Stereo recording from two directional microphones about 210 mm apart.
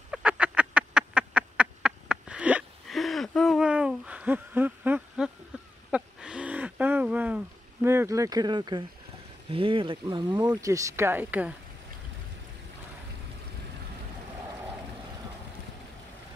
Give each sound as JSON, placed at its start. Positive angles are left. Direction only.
{"t": 0.1, "sound": "duck", "side_deg": -5}
{"t": 5.5, "sound": "a sound", "side_deg": -5}
{"t": 9.5, "sound": "speech", "side_deg": -25}